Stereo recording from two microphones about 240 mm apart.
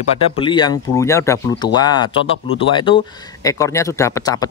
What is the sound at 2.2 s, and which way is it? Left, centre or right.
Speech, left.